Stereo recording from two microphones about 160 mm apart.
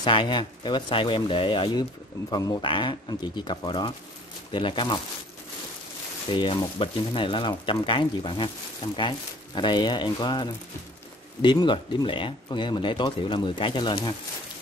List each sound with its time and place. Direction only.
0.0 s speech: 30° left (ahead or behind)
6.3 s speech: 30° left (ahead or behind)